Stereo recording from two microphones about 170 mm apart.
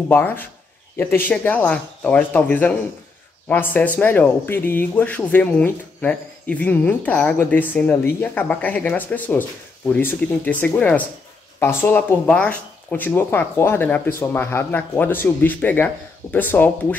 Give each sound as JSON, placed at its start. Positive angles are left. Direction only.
{"t": 0.1, "sound": "speech", "side_deg": 10}